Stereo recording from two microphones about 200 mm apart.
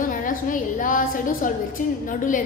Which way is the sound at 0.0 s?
40° left (ahead or behind).